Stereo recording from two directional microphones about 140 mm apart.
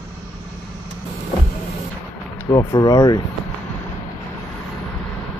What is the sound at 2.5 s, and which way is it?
Speech, 20° left (ahead or behind).